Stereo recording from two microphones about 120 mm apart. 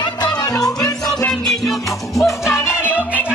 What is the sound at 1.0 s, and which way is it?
Music, 5° left (ahead or behind).